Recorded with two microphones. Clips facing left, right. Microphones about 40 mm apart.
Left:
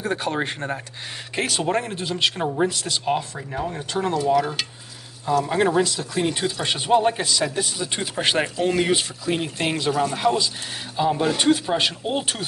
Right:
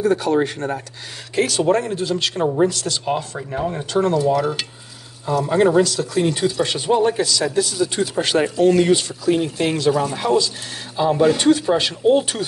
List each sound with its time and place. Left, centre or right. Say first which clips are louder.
0.0 s speech: right 7 dB; left
3.3 s speech: right 4 dB; centre
3.9 s speech: right 3 dB; centre
5.8 s speech: right 5 dB; centre
7.2 s speech: right 4 dB; left
9.8 s speech: right 1 dB; centre
11.3 s speech: right 4 dB; centre